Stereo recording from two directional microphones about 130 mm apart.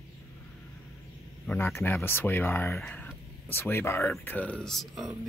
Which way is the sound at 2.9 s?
15° left (ahead or behind).